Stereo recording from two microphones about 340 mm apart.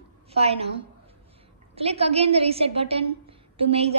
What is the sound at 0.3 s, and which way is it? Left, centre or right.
A woman's voice, centre.